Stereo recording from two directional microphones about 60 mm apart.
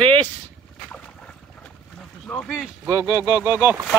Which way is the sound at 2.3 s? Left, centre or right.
Centre.